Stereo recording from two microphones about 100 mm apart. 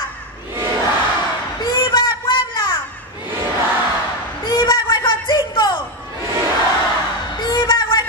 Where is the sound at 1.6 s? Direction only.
45° left (ahead or behind).